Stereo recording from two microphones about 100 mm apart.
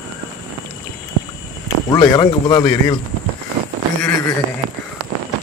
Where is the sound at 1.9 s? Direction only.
45° left (ahead or behind).